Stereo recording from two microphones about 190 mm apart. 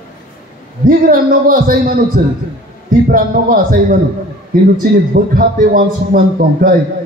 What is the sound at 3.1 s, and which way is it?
A man's voice, 50° right (ahead or behind).